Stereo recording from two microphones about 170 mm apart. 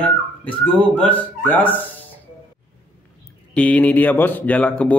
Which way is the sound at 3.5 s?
10° left (ahead or behind).